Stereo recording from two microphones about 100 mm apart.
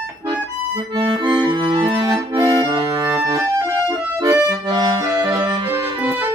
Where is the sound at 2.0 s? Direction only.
50° right (ahead or behind).